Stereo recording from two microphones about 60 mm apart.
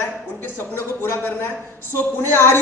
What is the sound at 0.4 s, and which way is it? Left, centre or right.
Speech, left.